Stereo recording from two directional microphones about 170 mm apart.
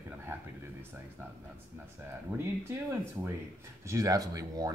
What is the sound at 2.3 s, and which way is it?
Speech, 10° right (ahead or behind).